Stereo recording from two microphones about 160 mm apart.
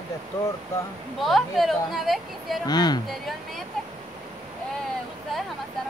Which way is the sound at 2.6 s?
25° left (ahead or behind).